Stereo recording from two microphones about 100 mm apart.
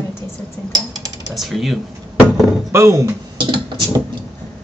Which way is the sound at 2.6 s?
30° right (ahead or behind).